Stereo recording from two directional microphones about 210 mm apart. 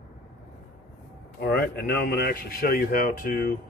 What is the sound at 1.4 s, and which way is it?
Speech, 45° left (ahead or behind).